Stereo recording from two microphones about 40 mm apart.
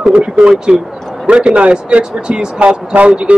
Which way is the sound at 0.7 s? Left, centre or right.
Centre.